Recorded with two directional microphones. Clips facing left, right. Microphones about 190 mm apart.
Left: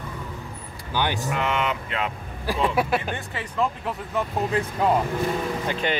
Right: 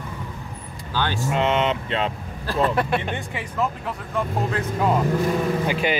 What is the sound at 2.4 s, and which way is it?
Speech, 10° left (ahead or behind).